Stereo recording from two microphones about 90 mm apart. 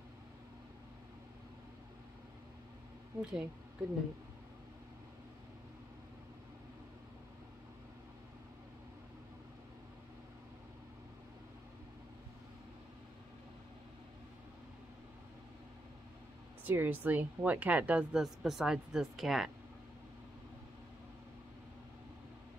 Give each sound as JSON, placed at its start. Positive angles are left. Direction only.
{"t": 3.2, "sound": "speech", "side_deg": -10}
{"t": 16.6, "sound": "speech", "side_deg": -20}
{"t": 18.2, "sound": "speech", "side_deg": -5}